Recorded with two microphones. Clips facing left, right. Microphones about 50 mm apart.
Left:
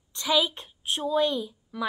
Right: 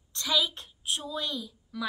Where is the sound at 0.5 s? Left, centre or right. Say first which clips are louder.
Left 3 dB; left.